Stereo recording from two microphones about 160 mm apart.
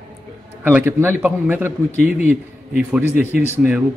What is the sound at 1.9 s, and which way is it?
Speech, 45° left (ahead or behind).